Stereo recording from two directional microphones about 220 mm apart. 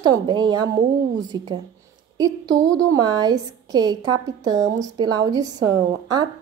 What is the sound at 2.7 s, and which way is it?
A woman's voice, 15° right (ahead or behind).